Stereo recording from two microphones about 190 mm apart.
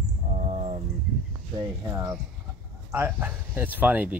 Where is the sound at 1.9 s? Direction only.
15° right (ahead or behind).